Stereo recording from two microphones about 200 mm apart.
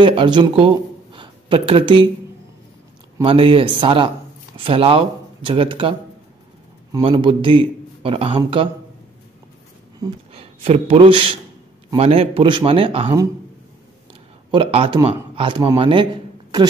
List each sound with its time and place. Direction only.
0.0 s speech: 25° right (ahead or behind)
3.2 s a man's voice: 25° right (ahead or behind)
9.9 s a man's voice: 25° right (ahead or behind)
14.5 s speech: 25° right (ahead or behind)